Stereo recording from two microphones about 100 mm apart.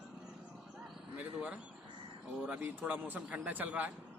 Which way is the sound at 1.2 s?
15° right (ahead or behind).